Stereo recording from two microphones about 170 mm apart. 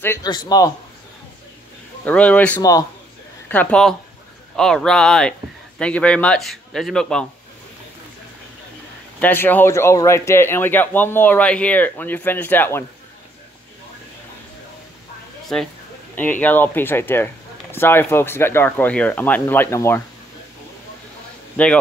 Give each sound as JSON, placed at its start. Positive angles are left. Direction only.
{"t": 0.0, "sound": "a man's voice", "side_deg": 15}
{"t": 2.0, "sound": "a man's voice", "side_deg": 10}
{"t": 9.2, "sound": "speech", "side_deg": 10}
{"t": 15.5, "sound": "a man's voice", "side_deg": 5}
{"t": 21.6, "sound": "speech", "side_deg": 10}